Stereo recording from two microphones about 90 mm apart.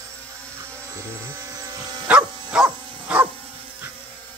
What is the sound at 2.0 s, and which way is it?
Livestock, 10° right (ahead or behind).